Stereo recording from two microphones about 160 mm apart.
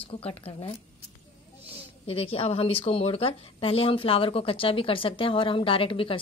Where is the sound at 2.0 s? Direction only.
35° left (ahead or behind).